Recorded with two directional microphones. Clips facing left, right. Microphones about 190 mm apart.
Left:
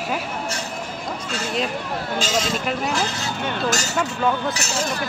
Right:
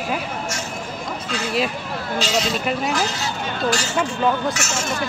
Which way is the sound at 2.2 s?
45° left (ahead or behind).